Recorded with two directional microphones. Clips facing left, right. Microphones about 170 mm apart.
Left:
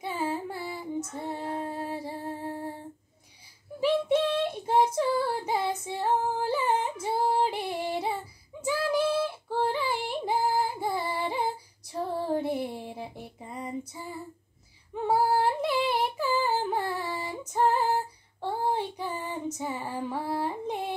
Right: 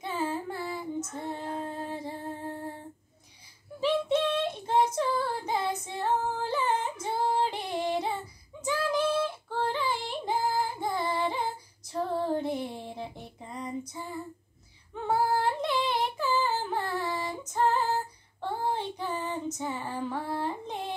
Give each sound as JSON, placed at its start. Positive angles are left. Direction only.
{"t": 0.0, "sound": "female singing", "side_deg": 10}
{"t": 3.8, "sound": "child singing", "side_deg": 10}
{"t": 15.0, "sound": "a sound", "side_deg": 10}
{"t": 17.5, "sound": "female singing", "side_deg": 10}